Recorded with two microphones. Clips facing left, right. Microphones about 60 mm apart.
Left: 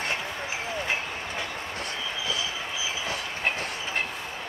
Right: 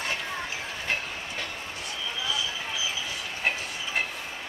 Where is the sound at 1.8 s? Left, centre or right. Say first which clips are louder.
Even; left.